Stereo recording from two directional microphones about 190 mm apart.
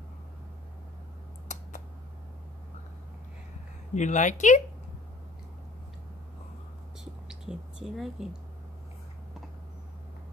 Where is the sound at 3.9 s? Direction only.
40° left (ahead or behind).